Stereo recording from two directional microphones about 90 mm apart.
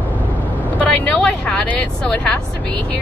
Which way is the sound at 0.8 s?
15° left (ahead or behind).